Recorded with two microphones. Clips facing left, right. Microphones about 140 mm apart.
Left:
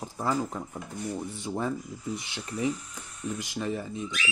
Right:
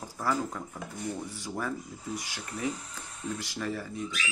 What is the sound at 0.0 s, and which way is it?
Speech, 20° left (ahead or behind).